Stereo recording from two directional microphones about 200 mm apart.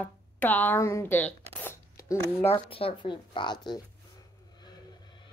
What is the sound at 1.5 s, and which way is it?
Shuffling cards, 10° left (ahead or behind).